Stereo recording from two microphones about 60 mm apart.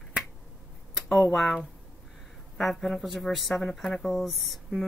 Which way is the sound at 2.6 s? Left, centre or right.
Centre.